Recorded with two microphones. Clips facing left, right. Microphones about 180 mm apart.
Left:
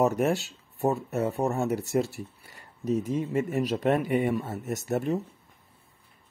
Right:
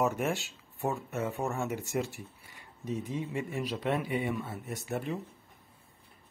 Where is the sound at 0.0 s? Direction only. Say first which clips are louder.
Left 6 dB; 40° left (ahead or behind).